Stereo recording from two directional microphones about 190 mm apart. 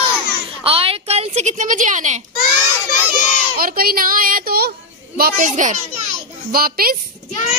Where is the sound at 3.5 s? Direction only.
50° right (ahead or behind).